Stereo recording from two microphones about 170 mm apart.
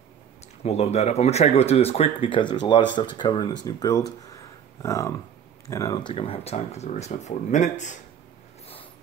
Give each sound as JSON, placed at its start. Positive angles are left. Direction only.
{"t": 0.7, "sound": "speech", "side_deg": 40}
{"t": 4.8, "sound": "a sound", "side_deg": 15}
{"t": 5.7, "sound": "speech", "side_deg": 20}